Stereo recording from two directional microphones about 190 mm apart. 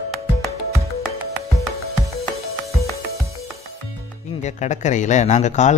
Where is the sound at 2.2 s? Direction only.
15° left (ahead or behind).